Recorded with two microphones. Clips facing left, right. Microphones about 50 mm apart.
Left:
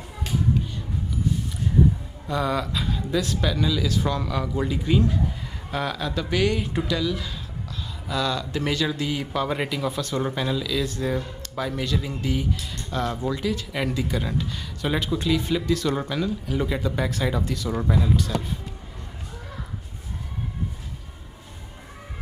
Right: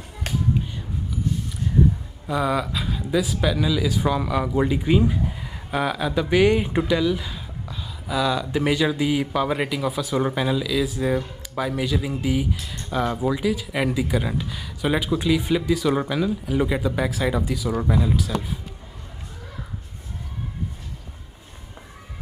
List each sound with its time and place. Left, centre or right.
2.2 s speech: centre